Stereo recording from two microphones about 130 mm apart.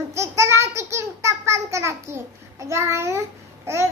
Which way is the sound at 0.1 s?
20° right (ahead or behind).